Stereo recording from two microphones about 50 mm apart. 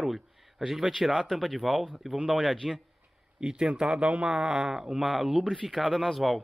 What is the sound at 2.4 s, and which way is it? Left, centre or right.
Speech, centre.